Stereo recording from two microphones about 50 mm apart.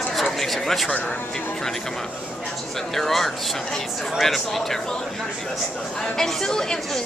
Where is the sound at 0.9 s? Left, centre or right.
Left.